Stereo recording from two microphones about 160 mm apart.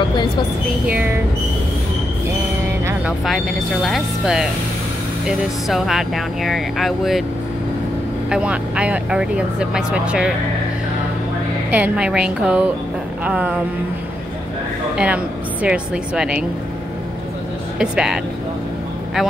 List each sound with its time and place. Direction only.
0.9 s speech: 15° right (ahead or behind)
3.1 s speech: centre (ahead or behind)
5.7 s speech: centre (ahead or behind)
8.3 s speech: 5° right (ahead or behind)
11.7 s speech: 5° right (ahead or behind)
15.0 s speech: 5° right (ahead or behind)
17.7 s speech: 5° right (ahead or behind)